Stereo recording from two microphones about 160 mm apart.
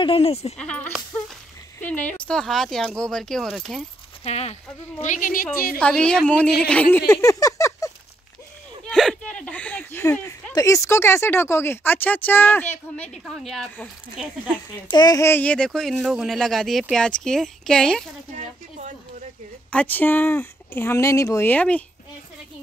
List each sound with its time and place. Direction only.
0.0 s speech: 35° left (ahead or behind)
0.6 s speech: 5° left (ahead or behind)
4.2 s speech: 40° left (ahead or behind); by 5.8 s 65° left (ahead or behind)
5.8 s speech: 5° left (ahead or behind)
7.1 s a sound: 20° left (ahead or behind)
8.8 s a sound: 5° left (ahead or behind)
10.5 s speech: 20° left (ahead or behind); by 14.2 s centre (ahead or behind)
14.9 s speech: 25° left (ahead or behind); by 18.0 s 5° left (ahead or behind)
19.7 s speech: 10° left (ahead or behind)